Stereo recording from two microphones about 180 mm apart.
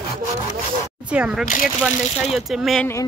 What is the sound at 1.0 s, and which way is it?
Speech, 5° right (ahead or behind).